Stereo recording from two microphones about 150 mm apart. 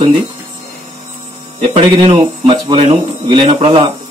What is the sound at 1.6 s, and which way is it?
Speech, 40° right (ahead or behind).